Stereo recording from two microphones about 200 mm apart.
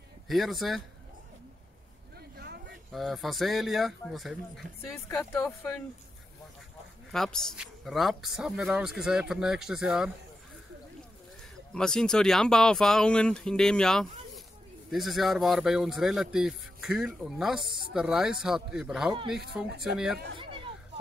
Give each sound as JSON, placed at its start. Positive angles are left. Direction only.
{"t": 0.3, "sound": "speech", "side_deg": 0}
{"t": 2.3, "sound": "a sound", "side_deg": -55}
{"t": 2.9, "sound": "speech", "side_deg": 0}
{"t": 7.1, "sound": "speech", "side_deg": 0}
{"t": 11.7, "sound": "speech", "side_deg": 5}